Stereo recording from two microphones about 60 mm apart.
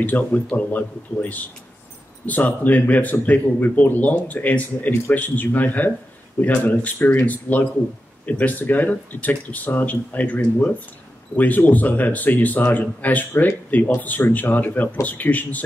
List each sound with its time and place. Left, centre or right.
0.0 s speech: left